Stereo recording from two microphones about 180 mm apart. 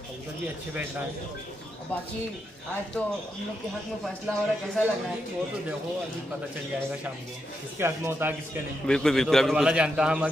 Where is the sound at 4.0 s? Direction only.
5° left (ahead or behind).